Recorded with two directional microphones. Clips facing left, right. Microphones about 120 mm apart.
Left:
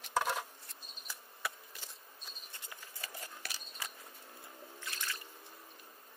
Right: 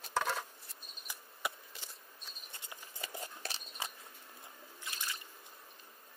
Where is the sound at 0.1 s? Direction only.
10° left (ahead or behind).